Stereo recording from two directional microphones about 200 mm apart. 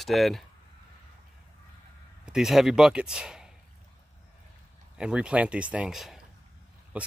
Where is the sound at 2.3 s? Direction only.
Centre (ahead or behind).